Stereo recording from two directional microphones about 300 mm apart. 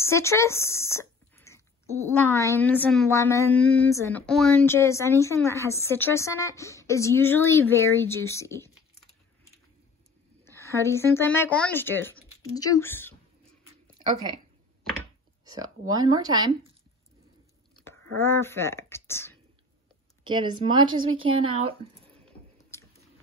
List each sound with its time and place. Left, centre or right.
0.0 s speech: centre
10.4 s speech: centre
15.4 s a sound: centre
15.9 s speech: centre
17.8 s speech: centre
20.2 s speech: centre
22.3 s a sound: centre